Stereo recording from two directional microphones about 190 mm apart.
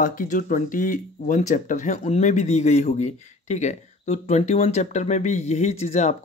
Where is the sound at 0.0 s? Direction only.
45° left (ahead or behind).